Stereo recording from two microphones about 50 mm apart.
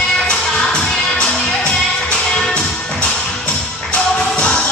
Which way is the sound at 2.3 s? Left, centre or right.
Centre.